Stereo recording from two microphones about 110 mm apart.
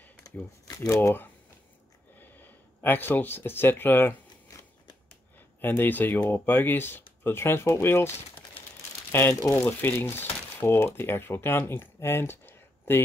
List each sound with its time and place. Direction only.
0.7 s speech: 30° left (ahead or behind)
4.5 s a sound: 30° left (ahead or behind)
5.6 s speech: 20° left (ahead or behind)
9.1 s speech: 25° left (ahead or behind)